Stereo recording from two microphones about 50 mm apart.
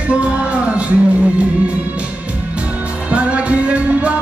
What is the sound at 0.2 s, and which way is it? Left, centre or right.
Music, right.